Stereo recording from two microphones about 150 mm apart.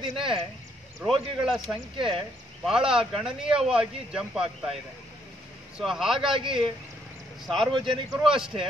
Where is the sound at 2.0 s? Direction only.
35° right (ahead or behind).